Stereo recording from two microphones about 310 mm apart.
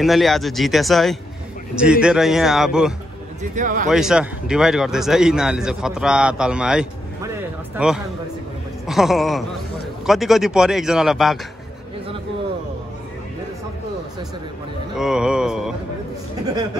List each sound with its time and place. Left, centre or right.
0.0 s speech: centre
3.5 s speech: right
3.9 s a man's voice: centre
15.0 s speech: centre